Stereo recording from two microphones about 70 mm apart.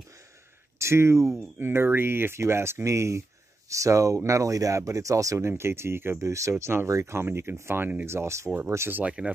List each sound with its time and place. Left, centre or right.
0.7 s speech: right
5.4 s speech: right
9.0 s speech: centre